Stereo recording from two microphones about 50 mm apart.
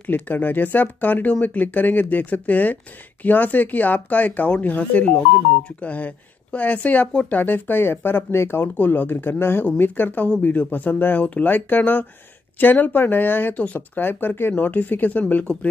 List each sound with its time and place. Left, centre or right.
0.0 s speech: left
8.7 s speech: left
14.5 s speech: left